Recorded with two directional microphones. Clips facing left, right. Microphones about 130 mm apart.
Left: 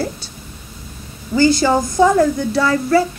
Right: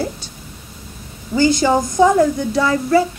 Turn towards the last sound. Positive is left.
turn(degrees=-15)  # may be behind; listen again after turning